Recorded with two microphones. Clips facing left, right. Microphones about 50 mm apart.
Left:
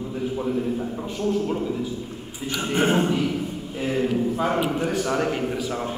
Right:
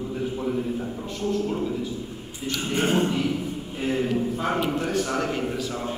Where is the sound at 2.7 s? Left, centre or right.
Left.